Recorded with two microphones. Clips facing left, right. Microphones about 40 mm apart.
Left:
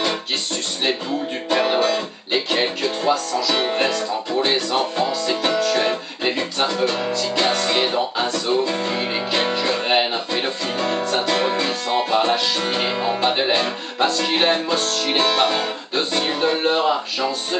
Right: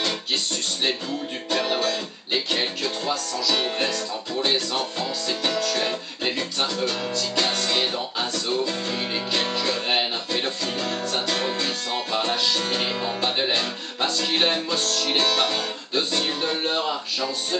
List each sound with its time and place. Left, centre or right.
1.5 s music: centre
7.1 s music: centre